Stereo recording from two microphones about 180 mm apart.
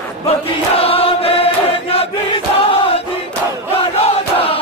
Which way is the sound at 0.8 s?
30° left (ahead or behind).